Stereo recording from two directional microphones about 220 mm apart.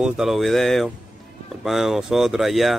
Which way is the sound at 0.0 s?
Centre (ahead or behind).